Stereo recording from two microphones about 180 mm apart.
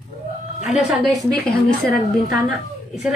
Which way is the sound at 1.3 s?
55° left (ahead or behind).